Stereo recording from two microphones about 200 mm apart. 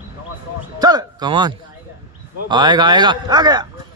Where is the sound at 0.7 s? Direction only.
20° right (ahead or behind).